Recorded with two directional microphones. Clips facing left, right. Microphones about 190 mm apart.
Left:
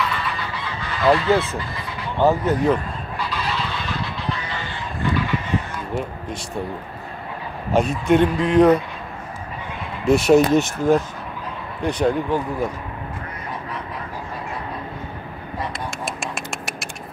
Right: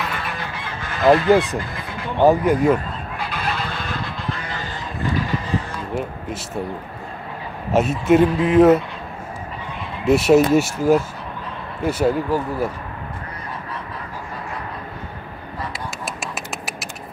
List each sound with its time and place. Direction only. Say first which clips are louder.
0.0 s goose: left 2 dB; 50° right (ahead or behind)
2.1 s speech: right 3 dB; 15° right (ahead or behind)
3.2 s a sound: even; 55° right (ahead or behind)
5.9 s speech: right 1 dB; centre (ahead or behind)
7.7 s speech: right 2 dB; 5° right (ahead or behind)
10.0 s speech: even; 5° right (ahead or behind)
15.7 s a sound: left 1 dB; 5° right (ahead or behind)